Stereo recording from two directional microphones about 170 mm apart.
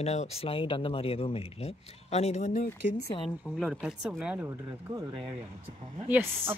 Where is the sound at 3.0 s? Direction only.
30° left (ahead or behind).